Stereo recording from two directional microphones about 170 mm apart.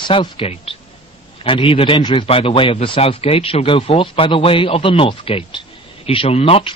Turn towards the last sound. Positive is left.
turn(degrees=35)  # may be behind; listen again after turning